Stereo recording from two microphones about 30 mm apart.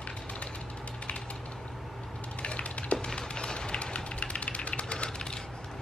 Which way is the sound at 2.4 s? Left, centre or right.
Left.